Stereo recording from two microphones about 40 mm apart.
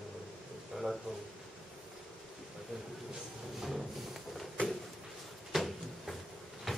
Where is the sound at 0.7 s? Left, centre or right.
Centre.